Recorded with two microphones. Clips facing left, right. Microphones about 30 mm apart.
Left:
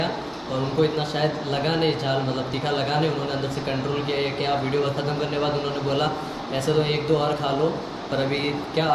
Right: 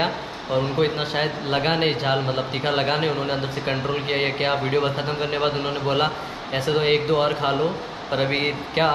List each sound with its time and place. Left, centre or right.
0.0 s a man's voice: right